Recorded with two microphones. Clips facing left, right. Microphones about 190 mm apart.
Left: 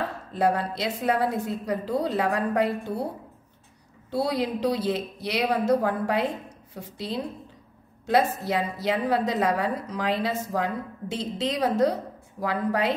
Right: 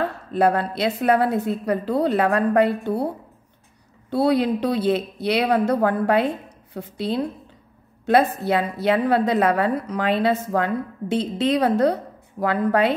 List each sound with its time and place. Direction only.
0.3 s a woman's voice: 65° right (ahead or behind)
4.1 s a woman's voice: 60° right (ahead or behind)